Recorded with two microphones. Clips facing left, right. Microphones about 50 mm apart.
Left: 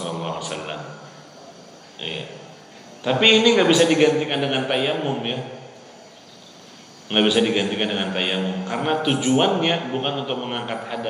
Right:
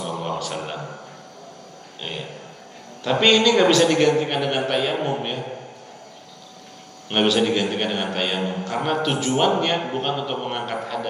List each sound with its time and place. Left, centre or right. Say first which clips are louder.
0.1 s a sound: right 1 dB; centre
2.0 s a man's voice: left 1 dB; centre
7.1 s a man's voice: left 1 dB; centre